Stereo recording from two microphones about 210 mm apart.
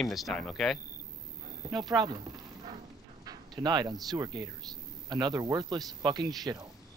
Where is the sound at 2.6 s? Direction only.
20° right (ahead or behind).